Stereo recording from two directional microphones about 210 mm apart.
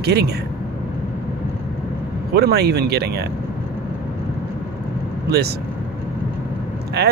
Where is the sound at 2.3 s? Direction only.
50° right (ahead or behind).